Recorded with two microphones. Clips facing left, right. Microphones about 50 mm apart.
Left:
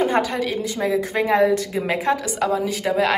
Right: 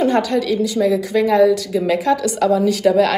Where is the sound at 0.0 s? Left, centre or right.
Centre.